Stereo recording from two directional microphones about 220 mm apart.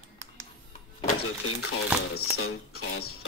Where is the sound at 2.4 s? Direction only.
75° left (ahead or behind).